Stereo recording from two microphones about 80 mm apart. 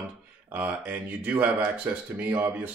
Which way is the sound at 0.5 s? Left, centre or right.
Right.